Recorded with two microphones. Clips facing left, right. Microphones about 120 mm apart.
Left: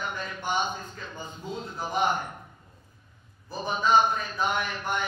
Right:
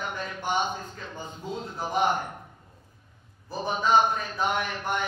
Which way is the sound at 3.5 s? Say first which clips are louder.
Even; 55° right (ahead or behind).